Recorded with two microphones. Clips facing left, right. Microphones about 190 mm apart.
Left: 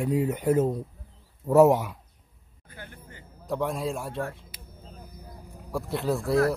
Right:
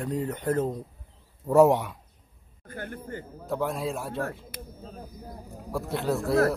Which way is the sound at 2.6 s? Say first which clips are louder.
Right 9 dB; 50° right (ahead or behind).